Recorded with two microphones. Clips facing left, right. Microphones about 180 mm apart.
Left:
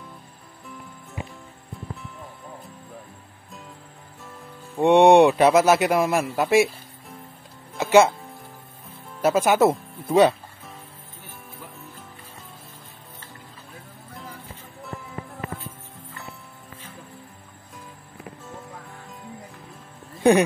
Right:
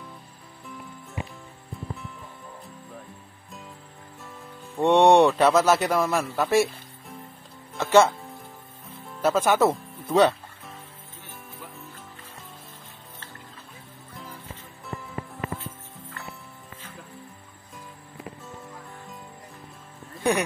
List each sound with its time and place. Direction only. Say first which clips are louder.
4.7 s a man's voice: left 3 dB; 10° left (ahead or behind)
7.7 s music: left 2 dB; 10° left (ahead or behind)
9.2 s a man's voice: left 2 dB; 10° left (ahead or behind)